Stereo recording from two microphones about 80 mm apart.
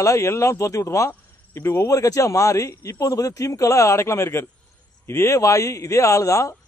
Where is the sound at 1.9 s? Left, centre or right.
Left.